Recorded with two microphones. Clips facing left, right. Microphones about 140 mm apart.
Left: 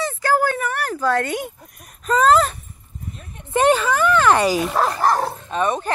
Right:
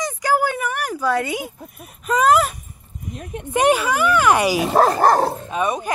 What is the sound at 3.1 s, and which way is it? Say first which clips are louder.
Speech: right 10 dB; 70° right (ahead or behind).